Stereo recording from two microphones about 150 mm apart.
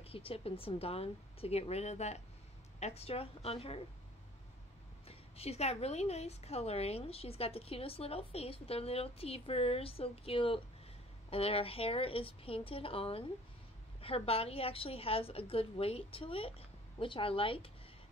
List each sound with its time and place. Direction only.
0.0 s a woman's voice: 40° left (ahead or behind)
5.0 s a woman's voice: 45° left (ahead or behind)